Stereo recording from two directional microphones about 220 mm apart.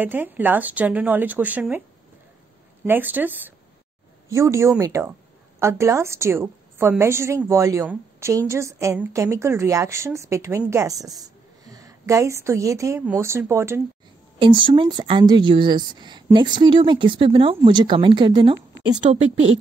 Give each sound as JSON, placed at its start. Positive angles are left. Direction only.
{"t": 0.0, "sound": "a woman's voice", "side_deg": -10}
{"t": 2.8, "sound": "a woman's voice", "side_deg": -10}
{"t": 14.4, "sound": "a woman's voice", "side_deg": -20}